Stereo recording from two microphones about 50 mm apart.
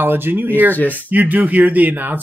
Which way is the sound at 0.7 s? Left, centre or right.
Left.